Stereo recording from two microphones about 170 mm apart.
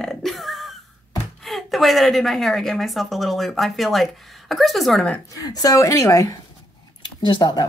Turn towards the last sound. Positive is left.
turn(degrees=25)  # may be behind; listen again after turning